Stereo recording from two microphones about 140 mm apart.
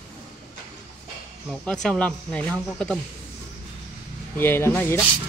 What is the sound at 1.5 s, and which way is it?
Speech, 5° left (ahead or behind).